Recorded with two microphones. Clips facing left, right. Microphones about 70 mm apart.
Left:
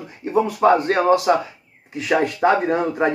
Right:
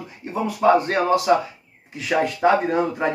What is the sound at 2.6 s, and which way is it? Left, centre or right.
Speech, left.